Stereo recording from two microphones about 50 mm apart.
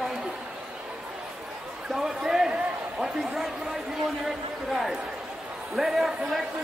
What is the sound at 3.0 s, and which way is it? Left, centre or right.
A man's voice, centre.